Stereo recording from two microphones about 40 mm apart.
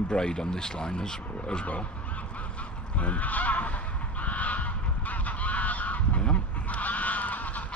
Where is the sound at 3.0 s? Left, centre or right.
Left.